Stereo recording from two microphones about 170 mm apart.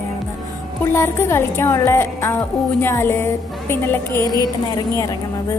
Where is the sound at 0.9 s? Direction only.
15° left (ahead or behind).